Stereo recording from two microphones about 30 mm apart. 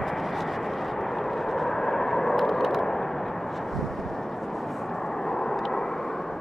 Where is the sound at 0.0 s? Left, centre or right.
Centre.